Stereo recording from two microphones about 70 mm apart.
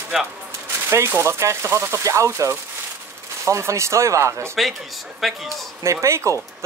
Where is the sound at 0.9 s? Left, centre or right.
Right.